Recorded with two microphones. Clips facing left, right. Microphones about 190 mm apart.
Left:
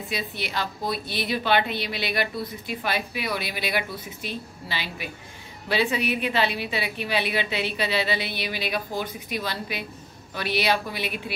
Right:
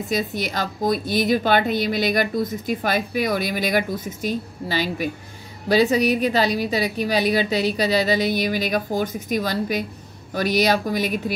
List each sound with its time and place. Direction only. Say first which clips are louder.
0.1 s a woman's voice: right 6 dB; 45° right (ahead or behind)